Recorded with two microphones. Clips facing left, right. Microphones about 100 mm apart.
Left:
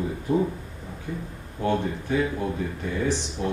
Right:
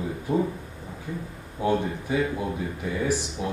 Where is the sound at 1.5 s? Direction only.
10° right (ahead or behind).